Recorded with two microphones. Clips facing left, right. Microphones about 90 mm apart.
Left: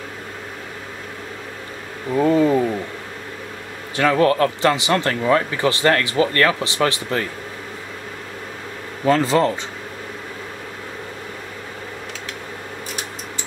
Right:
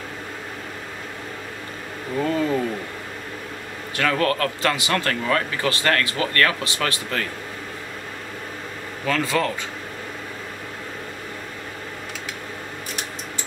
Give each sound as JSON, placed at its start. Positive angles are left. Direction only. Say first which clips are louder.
{"t": 2.1, "sound": "speech", "louder": "left 6 dB", "side_deg": 20}
{"t": 3.9, "sound": "speech", "louder": "left 5 dB", "side_deg": 25}
{"t": 9.0, "sound": "speech", "louder": "left 6 dB", "side_deg": 30}